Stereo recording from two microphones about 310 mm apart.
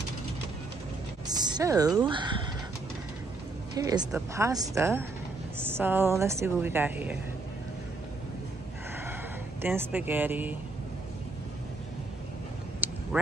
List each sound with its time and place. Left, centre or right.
1.2 s speech: centre
3.7 s speech: centre
9.6 s speech: centre
12.8 s a sound: centre